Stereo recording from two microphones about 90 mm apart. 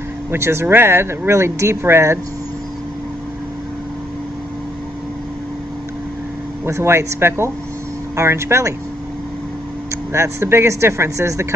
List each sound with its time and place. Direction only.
0.3 s speech: 30° right (ahead or behind)
6.6 s speech: 30° right (ahead or behind)
10.1 s speech: 30° right (ahead or behind)